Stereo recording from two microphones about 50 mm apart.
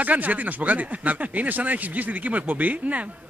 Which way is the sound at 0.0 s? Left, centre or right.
Right.